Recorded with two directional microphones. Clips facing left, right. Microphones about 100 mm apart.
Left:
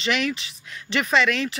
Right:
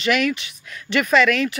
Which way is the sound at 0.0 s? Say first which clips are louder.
Right 4 dB; 30° left (ahead or behind).